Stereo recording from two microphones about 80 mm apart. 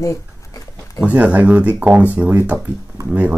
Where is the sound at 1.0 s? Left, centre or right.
Centre.